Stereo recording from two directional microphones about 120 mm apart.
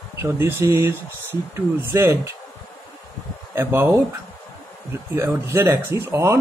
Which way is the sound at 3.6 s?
20° right (ahead or behind).